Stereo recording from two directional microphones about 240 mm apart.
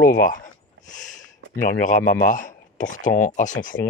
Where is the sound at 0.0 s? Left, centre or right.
Left.